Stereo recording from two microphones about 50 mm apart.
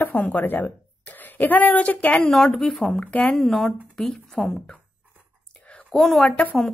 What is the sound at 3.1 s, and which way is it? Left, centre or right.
Speech, left.